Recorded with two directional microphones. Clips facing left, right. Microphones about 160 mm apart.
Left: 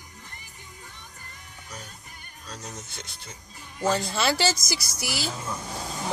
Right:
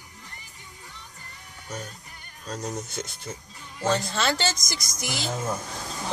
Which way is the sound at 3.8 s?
10° left (ahead or behind).